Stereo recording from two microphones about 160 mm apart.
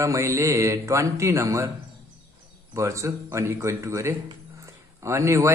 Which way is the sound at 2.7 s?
20° right (ahead or behind).